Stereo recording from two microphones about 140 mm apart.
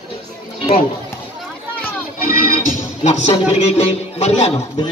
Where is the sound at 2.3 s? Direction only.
80° left.